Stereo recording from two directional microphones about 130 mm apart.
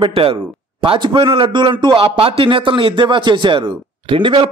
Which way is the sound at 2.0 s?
45° right (ahead or behind).